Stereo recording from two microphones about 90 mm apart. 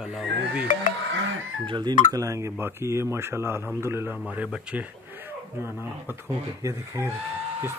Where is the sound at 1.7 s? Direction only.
50° right (ahead or behind).